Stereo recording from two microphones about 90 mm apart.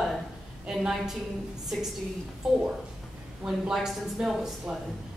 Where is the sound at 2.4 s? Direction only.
5° right (ahead or behind).